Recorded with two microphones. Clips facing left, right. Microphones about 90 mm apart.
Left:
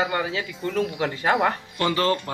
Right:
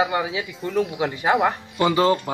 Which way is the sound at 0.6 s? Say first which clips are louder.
Right 2 dB; 5° right (ahead or behind).